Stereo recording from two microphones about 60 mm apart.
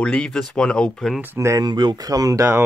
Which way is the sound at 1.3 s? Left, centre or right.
Right.